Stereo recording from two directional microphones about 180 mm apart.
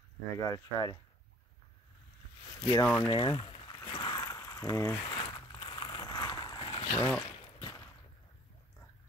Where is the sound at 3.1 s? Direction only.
25° left (ahead or behind).